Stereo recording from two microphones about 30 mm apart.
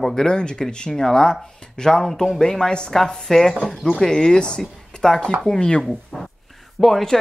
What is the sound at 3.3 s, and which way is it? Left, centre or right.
Speech, centre.